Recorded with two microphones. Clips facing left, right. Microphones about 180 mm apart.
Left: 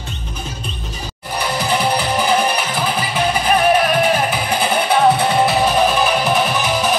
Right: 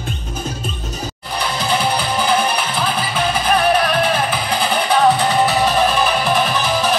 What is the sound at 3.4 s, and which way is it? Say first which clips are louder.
Music: left 1 dB; 10° left (ahead or behind).